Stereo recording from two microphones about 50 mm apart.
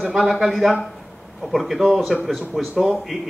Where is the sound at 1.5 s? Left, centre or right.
Centre.